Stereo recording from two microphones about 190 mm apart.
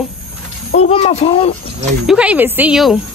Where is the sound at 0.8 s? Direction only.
35° left (ahead or behind).